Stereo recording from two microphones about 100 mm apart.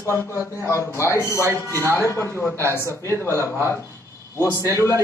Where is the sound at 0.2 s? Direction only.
30° left (ahead or behind).